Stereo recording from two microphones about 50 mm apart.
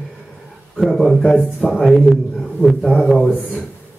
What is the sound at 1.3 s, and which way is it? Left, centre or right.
Speech, left.